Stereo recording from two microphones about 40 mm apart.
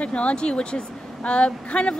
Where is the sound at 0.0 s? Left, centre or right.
Left.